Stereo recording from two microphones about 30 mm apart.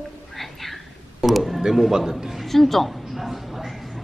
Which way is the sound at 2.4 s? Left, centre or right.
Centre.